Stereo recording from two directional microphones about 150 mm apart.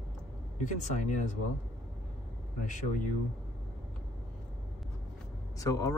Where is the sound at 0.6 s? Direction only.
55° left (ahead or behind).